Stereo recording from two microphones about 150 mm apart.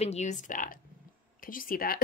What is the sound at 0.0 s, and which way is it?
Speech, 45° left (ahead or behind).